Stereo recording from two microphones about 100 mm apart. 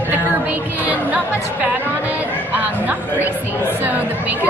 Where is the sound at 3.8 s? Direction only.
15° right (ahead or behind).